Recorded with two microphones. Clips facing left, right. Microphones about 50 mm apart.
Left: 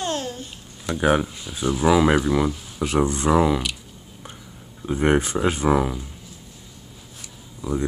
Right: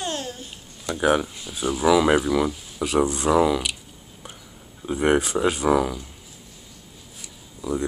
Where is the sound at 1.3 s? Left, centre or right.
Centre.